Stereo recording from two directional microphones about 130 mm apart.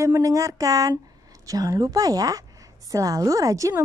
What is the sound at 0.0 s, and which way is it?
A woman's voice, 25° right (ahead or behind).